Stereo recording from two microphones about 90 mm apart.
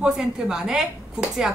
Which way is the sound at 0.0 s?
5° right (ahead or behind).